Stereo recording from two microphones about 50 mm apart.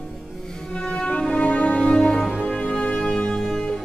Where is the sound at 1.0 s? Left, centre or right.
Left.